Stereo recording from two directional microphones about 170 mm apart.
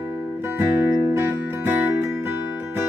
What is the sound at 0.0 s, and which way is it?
Music, 10° right (ahead or behind).